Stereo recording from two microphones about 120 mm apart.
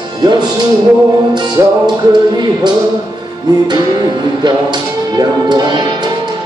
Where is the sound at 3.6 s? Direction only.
35° right (ahead or behind).